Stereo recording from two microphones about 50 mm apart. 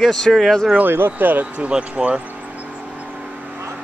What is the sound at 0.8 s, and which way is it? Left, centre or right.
Speech, right.